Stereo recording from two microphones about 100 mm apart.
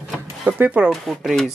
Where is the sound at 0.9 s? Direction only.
Centre (ahead or behind).